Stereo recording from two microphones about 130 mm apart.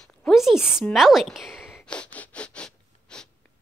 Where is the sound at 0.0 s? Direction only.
Centre (ahead or behind).